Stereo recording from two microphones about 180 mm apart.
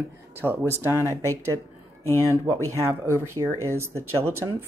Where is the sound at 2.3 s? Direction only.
15° right (ahead or behind).